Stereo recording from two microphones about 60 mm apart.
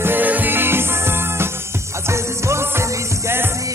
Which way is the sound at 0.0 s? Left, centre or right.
Right.